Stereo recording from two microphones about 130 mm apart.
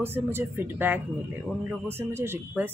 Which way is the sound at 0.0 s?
15° right (ahead or behind).